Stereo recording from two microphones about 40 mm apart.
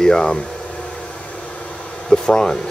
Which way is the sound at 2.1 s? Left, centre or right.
Centre.